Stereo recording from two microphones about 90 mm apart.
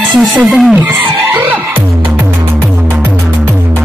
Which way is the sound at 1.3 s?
20° right (ahead or behind).